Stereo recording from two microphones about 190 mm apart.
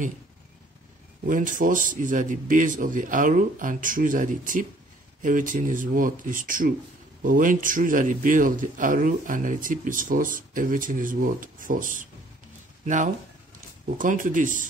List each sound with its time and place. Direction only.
1.2 s a man's voice: 45° right (ahead or behind)